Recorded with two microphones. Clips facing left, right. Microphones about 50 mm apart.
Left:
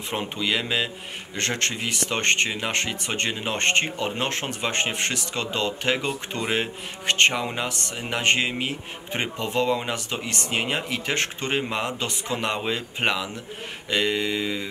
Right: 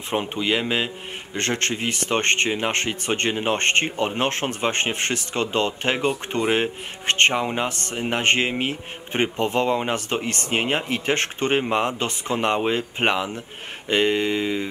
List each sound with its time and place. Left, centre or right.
0.1 s speech: right